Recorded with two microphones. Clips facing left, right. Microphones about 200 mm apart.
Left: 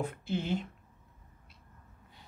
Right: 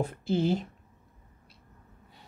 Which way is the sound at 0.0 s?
35° right (ahead or behind).